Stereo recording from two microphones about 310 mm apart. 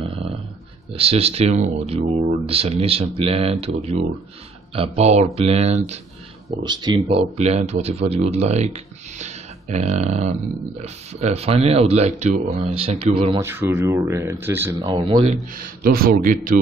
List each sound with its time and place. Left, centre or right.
0.0 s a sound: centre
0.9 s speech: centre
15.5 s speech: right